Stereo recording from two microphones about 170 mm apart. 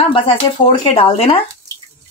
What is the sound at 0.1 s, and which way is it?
Speech, 30° left (ahead or behind).